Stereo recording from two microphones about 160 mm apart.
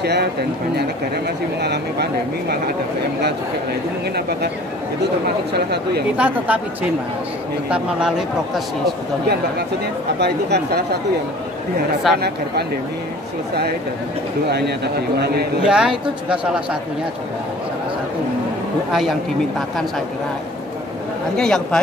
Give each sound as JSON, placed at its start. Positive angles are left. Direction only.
{"t": 0.0, "sound": "speech", "side_deg": -90}
{"t": 5.5, "sound": "speech", "side_deg": -90}
{"t": 6.1, "sound": "speech", "side_deg": -10}
{"t": 10.1, "sound": "speech", "side_deg": -90}
{"t": 12.1, "sound": "speech", "side_deg": 0}
{"t": 15.1, "sound": "speech", "side_deg": -85}
{"t": 15.6, "sound": "speech", "side_deg": -5}
{"t": 18.9, "sound": "speech", "side_deg": 0}
{"t": 21.4, "sound": "speech", "side_deg": 5}